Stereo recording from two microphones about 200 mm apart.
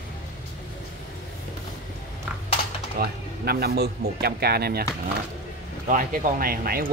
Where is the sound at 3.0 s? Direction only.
50° right (ahead or behind).